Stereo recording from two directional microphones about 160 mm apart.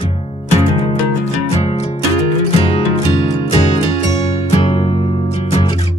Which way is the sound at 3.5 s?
40° left (ahead or behind).